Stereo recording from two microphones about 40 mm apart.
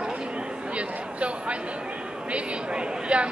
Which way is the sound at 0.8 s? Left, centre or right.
Right.